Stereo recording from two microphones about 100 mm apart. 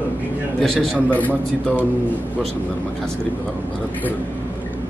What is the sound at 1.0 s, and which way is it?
Speech, 15° left (ahead or behind).